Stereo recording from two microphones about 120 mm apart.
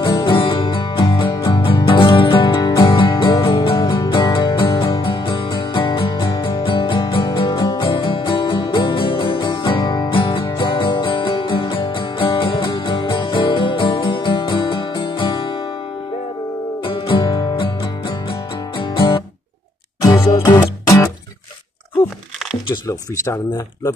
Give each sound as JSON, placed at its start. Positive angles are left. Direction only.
{"t": 0.0, "sound": "music", "side_deg": 45}
{"t": 16.8, "sound": "music", "side_deg": 45}
{"t": 18.9, "sound": "guitar", "side_deg": 45}
{"t": 20.0, "sound": "music", "side_deg": 30}
{"t": 22.8, "sound": "speech", "side_deg": 25}